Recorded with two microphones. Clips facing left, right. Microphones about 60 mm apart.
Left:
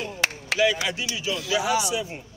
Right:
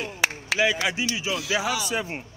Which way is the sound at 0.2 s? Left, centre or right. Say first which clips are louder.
Right 1 dB; centre.